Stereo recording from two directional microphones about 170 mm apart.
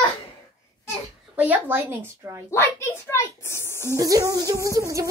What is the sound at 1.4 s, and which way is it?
A woman's voice, 10° right (ahead or behind).